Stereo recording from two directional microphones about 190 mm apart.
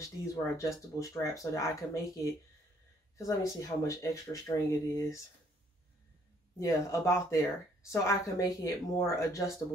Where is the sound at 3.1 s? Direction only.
15° left (ahead or behind).